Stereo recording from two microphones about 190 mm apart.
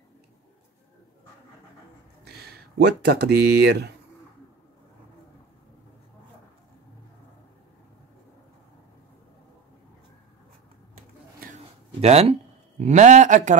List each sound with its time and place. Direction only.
2.2 s speech: 60° right (ahead or behind)
12.0 s speech: 35° right (ahead or behind)